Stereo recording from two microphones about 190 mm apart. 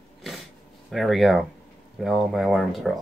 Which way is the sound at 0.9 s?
Centre (ahead or behind).